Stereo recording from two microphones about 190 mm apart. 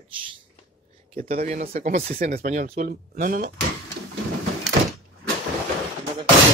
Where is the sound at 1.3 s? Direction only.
45° right (ahead or behind).